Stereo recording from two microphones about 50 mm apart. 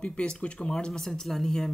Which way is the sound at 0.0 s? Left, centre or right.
Centre.